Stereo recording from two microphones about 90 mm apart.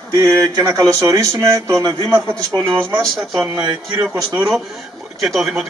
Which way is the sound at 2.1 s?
25° right (ahead or behind).